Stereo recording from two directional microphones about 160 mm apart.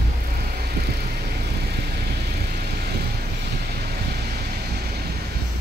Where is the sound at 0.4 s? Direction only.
75° right (ahead or behind).